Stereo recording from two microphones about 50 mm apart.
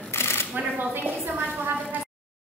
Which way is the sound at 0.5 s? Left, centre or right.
Right.